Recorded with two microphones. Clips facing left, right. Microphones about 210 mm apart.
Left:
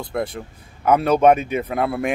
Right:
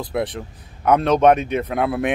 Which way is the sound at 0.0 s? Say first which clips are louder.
Right 1 dB; centre (ahead or behind).